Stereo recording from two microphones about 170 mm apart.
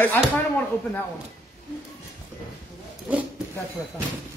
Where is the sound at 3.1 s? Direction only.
5° right (ahead or behind).